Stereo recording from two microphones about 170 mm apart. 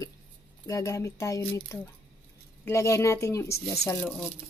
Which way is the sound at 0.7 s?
20° left (ahead or behind).